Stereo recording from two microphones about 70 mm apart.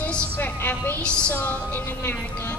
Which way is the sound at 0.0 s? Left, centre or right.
Left.